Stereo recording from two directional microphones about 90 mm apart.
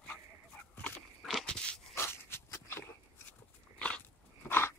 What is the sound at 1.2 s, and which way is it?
Crunch, centre (ahead or behind).